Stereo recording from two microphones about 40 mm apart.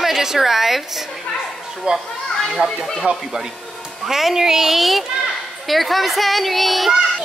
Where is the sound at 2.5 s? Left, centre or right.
Centre.